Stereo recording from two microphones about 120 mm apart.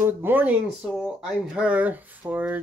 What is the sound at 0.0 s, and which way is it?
Speech, 15° right (ahead or behind).